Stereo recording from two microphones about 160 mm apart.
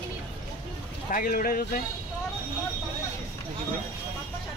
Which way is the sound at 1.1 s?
60° left (ahead or behind).